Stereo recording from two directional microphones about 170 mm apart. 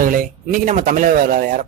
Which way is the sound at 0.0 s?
50° right (ahead or behind).